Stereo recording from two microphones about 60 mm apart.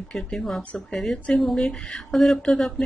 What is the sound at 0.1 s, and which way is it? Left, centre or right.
Speech, centre.